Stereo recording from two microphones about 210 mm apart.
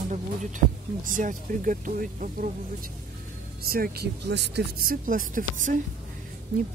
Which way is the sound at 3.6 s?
45° right (ahead or behind).